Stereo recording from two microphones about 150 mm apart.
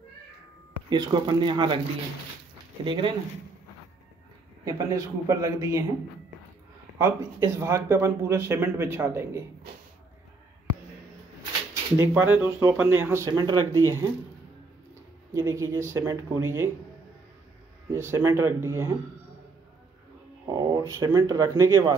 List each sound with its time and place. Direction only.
0.8 s speech: 30° right (ahead or behind)
2.8 s speech: 35° right (ahead or behind)
4.6 s speech: 20° right (ahead or behind)
7.0 s speech: 20° right (ahead or behind)
12.0 s speech: 15° right (ahead or behind)
13.3 s speech: 25° right (ahead or behind)
15.3 s speech: 20° right (ahead or behind)
17.9 s speech: 20° right (ahead or behind)
20.4 s speech: 25° right (ahead or behind)